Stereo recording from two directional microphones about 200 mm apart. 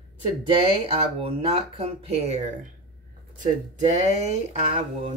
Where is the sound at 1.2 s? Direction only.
30° right (ahead or behind).